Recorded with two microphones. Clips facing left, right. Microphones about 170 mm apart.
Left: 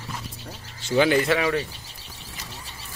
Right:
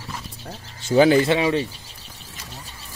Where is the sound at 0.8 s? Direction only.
35° right (ahead or behind).